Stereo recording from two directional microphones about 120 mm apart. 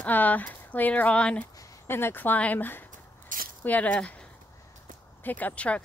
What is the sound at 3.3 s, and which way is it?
Squish, 90° right.